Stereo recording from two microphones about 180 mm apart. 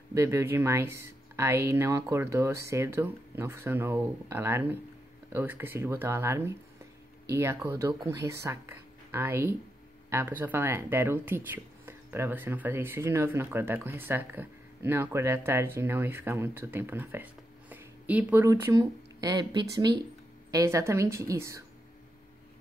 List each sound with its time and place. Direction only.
0.1 s speech: 15° right (ahead or behind)
7.6 s speech: 15° right (ahead or behind)